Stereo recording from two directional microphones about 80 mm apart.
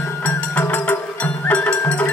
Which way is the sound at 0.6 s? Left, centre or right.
Centre.